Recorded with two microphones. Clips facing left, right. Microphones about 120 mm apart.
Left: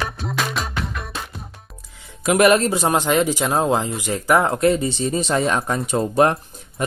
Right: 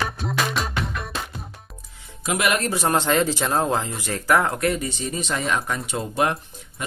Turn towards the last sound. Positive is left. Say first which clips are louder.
# left 6 dB
turn(degrees=40)  # may be behind; listen again after turning